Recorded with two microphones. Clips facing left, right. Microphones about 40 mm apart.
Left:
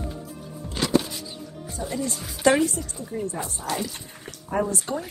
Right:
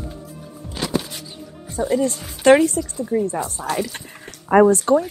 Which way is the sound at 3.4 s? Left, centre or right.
Right.